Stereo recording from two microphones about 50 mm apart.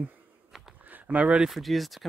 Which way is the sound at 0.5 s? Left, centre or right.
Centre.